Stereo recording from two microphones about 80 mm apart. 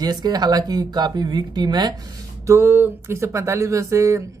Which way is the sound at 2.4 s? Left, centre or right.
Right.